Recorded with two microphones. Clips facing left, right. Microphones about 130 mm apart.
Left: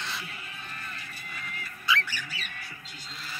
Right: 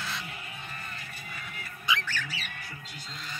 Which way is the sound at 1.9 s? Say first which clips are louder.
Left 2 dB; 20° right (ahead or behind).